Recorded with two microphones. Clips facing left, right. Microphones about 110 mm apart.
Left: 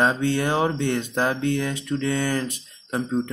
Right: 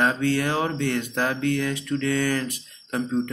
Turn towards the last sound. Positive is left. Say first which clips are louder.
# even
turn(degrees=25)  # may be behind; listen again after turning